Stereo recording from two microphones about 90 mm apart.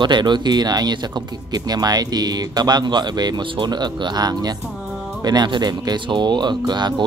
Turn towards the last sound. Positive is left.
turn(degrees=-55)  # may be behind; listen again after turning